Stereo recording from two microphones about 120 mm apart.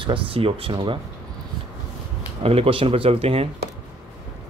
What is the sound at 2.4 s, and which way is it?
Speech, 50° right (ahead or behind).